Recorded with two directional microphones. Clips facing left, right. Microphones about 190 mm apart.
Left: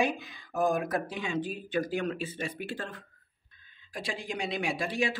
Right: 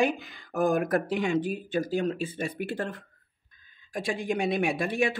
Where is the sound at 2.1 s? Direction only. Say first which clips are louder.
Right 4 dB; 50° right (ahead or behind).